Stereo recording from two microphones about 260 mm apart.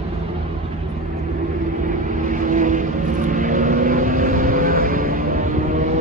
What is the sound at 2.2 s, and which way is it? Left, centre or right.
Vehicle, right.